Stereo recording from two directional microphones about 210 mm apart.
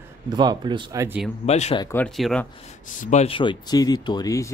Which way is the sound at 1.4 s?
30° left (ahead or behind).